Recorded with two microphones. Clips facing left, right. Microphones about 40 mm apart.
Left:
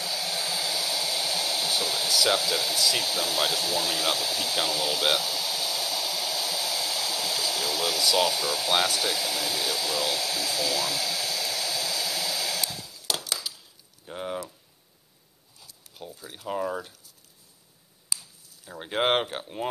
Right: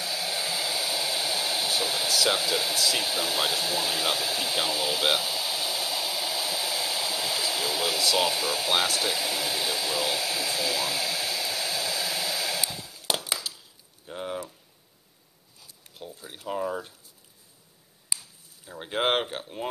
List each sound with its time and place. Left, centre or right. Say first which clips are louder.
0.0 s hair dryer: even; centre
13.0 s a sound: right 2 dB; right
14.0 s speech: left 1 dB; centre
16.2 s speech: even; centre
16.4 s speech: even; centre
18.7 s speech: left 1 dB; centre